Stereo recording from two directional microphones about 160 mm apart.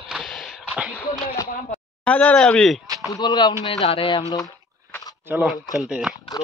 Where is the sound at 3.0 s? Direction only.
25° left (ahead or behind).